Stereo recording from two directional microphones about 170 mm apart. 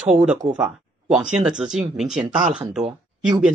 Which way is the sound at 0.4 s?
5° right (ahead or behind).